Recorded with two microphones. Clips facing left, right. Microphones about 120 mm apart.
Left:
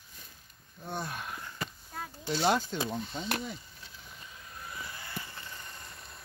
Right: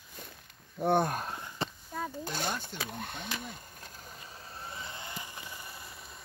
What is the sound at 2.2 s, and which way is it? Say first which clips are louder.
Speech: left 13 dB; 50° right (ahead or behind).